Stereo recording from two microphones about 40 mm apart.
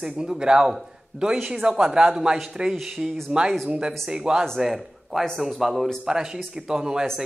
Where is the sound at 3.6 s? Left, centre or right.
Right.